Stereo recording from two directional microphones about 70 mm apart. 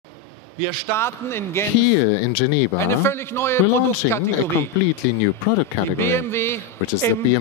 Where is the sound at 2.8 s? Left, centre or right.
Left.